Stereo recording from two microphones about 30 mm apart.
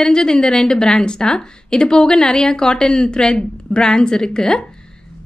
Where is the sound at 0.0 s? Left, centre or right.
Left.